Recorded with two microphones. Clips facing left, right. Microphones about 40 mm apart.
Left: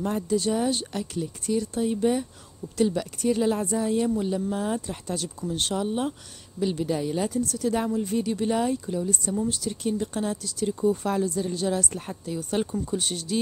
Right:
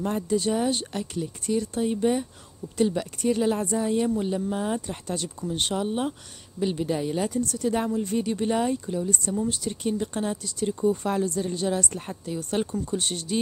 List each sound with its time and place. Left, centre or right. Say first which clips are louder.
0.0 s a woman's voice: even; centre
7.3 s a woman's voice: even; centre